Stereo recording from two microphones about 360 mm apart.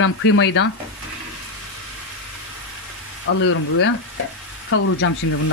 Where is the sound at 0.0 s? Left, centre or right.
Left.